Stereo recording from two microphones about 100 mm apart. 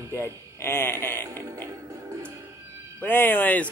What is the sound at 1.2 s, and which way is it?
Music, 30° right (ahead or behind).